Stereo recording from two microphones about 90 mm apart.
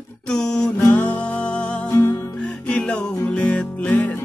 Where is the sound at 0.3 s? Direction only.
10° left (ahead or behind).